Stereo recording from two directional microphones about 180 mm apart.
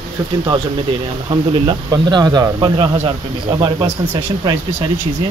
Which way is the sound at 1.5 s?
25° right (ahead or behind).